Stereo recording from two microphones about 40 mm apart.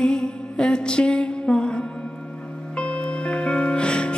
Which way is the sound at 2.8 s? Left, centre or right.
Left.